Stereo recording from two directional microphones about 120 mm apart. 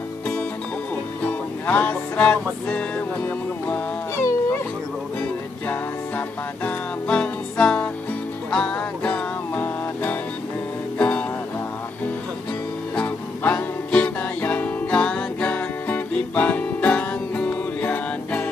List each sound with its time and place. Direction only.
1.2 s music: 15° left (ahead or behind)
5.7 s music: 10° left (ahead or behind)
12.9 s music: 15° left (ahead or behind)